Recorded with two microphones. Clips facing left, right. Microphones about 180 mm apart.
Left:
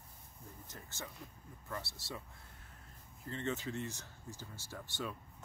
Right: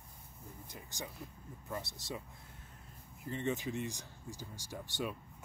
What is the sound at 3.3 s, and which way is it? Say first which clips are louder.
Speech: right 3 dB; 15° right (ahead or behind).